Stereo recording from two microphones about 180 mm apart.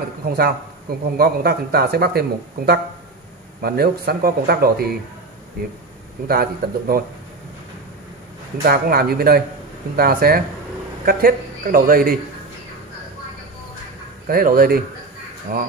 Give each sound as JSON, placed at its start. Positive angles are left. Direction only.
{"t": 0.4, "sound": "a man's voice", "side_deg": -55}
{"t": 6.2, "sound": "a man's voice", "side_deg": -55}
{"t": 8.6, "sound": "a man's voice", "side_deg": -55}
{"t": 14.2, "sound": "a man's voice", "side_deg": -55}